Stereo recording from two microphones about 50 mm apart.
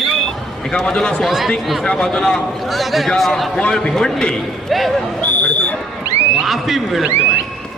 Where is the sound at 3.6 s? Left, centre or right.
Centre.